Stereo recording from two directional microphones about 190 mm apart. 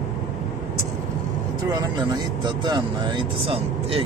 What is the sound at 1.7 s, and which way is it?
Speech, 20° right (ahead or behind).